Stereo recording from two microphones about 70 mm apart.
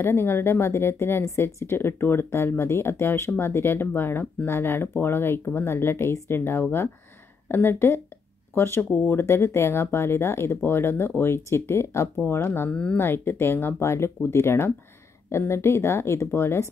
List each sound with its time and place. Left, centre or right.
0.0 s speech: left